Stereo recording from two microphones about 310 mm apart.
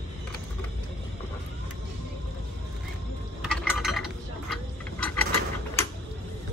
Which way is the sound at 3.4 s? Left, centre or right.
Centre.